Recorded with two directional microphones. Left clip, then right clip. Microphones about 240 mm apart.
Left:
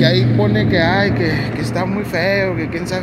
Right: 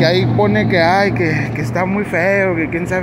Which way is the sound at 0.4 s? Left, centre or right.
Centre.